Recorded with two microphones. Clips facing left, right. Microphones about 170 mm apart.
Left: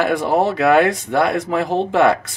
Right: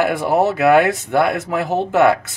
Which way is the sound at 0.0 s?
5° right (ahead or behind).